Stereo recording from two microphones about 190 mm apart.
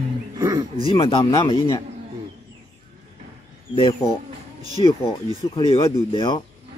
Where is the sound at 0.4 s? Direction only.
15° right (ahead or behind).